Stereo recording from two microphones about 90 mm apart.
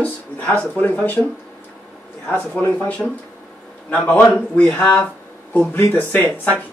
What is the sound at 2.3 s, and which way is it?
Speech, 15° left (ahead or behind).